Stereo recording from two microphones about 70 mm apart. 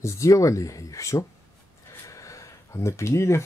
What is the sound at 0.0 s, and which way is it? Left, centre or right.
Speech, left.